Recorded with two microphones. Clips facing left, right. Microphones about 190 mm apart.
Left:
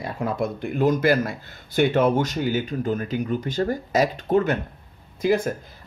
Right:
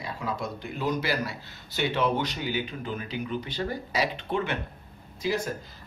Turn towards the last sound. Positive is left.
turn(degrees=55)  # may be behind; listen again after turning